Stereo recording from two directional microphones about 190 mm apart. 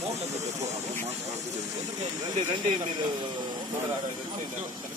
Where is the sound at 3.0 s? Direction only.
25° right (ahead or behind).